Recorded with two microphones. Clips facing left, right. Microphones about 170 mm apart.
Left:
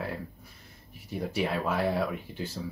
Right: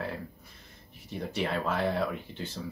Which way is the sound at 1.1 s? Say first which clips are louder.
Left 2 dB; 5° left (ahead or behind).